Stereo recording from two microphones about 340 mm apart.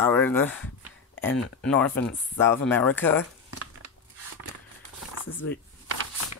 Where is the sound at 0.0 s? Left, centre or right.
Centre.